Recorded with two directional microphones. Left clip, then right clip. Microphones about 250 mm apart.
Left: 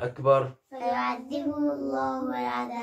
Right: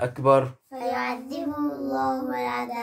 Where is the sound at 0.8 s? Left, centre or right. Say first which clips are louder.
Even; centre.